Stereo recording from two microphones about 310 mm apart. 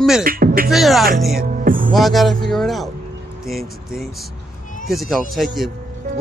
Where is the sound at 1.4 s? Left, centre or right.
Right.